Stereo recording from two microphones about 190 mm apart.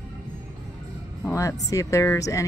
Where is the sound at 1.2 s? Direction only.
15° left (ahead or behind).